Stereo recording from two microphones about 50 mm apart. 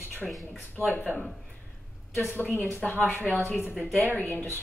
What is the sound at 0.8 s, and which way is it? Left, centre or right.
Speech, right.